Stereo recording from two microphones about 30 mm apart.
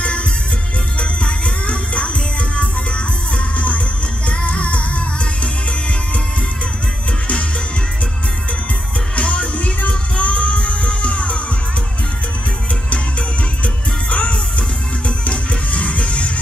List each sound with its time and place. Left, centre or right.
0.9 s music: left
9.1 s music: left
14.1 s music: left